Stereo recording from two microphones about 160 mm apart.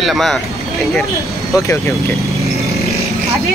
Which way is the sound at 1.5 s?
20° left (ahead or behind).